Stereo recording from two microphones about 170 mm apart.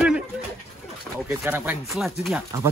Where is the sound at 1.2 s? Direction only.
10° right (ahead or behind).